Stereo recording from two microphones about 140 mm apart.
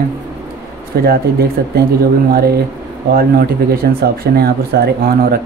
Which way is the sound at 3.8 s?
90° right.